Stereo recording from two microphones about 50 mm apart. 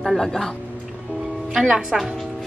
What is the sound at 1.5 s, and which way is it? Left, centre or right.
Speech, centre.